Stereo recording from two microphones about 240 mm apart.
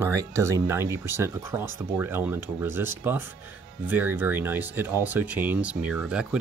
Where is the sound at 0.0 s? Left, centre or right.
Centre.